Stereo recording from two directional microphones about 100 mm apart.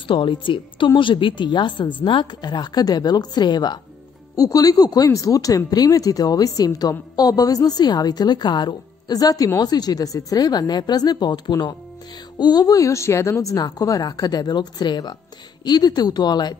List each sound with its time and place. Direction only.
0.1 s a woman's voice: 55° left (ahead or behind)